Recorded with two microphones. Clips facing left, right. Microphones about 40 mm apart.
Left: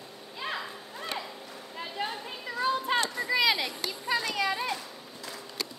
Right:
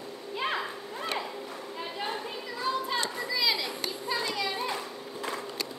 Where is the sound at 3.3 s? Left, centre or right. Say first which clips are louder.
Left 4 dB; left.